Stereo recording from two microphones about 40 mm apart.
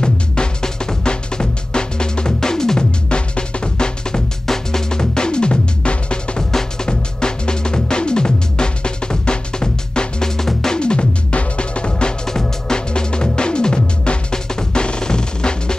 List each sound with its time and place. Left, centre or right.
0.0 s drum: left
3.1 s drum: left
4.5 s music: centre
10.8 s music: left
12.3 s music: centre